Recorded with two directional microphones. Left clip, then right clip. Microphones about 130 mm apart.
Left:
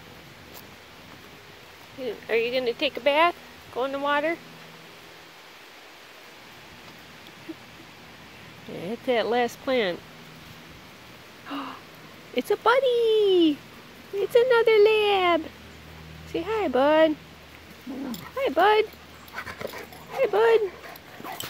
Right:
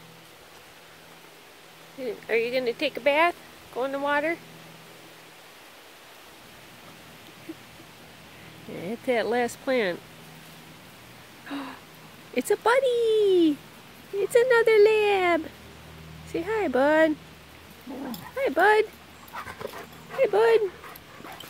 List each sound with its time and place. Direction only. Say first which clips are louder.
2.2 s speech: left 1 dB; 20° right (ahead or behind)
8.7 s speech: left 1 dB; 15° right (ahead or behind)
11.4 s a sound: left 2 dB; 25° right (ahead or behind)
12.4 s speech: left 1 dB; 25° right (ahead or behind)
18.3 s speech: even; 20° right (ahead or behind)
20.2 s speech: even; 30° right (ahead or behind)